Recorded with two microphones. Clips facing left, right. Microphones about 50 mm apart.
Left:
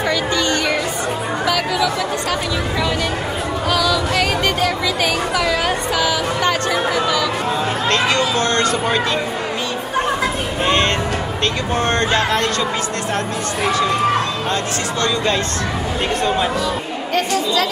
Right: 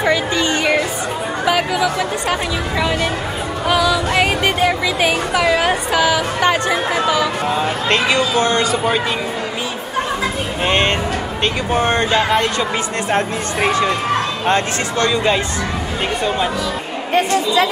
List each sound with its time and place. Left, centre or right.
0.0 s music: right
1.4 s speech: centre
3.6 s speech: centre
10.6 s a woman's voice: right
13.1 s speech: right
15.0 s speech: centre
17.1 s a woman's voice: right